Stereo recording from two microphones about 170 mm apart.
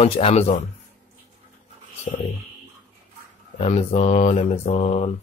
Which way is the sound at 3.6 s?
40° left (ahead or behind).